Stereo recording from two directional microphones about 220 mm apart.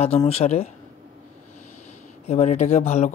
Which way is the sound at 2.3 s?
30° left (ahead or behind).